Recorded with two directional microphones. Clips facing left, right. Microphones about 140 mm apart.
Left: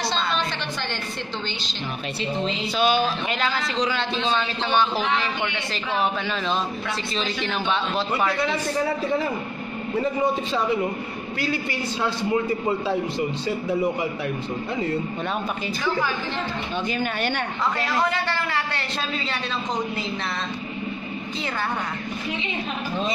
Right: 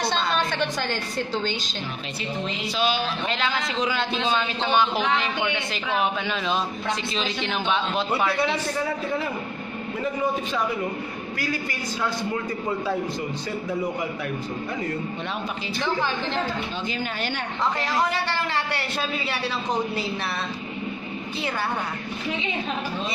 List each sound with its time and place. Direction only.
0.5 s a sound: 45° right (ahead or behind)
2.7 s a woman's voice: 55° left (ahead or behind)
3.7 s speech: 5° right (ahead or behind)
6.2 s speech: 5° right (ahead or behind)
17.0 s a woman's voice: 60° left (ahead or behind)
17.7 s a man's voice: 15° right (ahead or behind)